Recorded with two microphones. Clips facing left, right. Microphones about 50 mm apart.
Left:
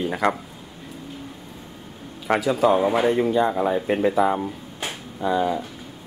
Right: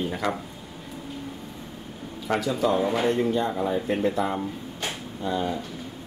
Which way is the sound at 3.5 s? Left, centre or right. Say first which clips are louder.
Left 4 dB; left.